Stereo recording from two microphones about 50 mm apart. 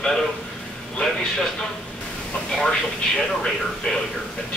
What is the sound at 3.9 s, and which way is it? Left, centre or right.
Speech, centre.